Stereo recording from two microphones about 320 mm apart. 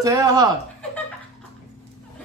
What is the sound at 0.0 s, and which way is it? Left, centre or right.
Speech, centre.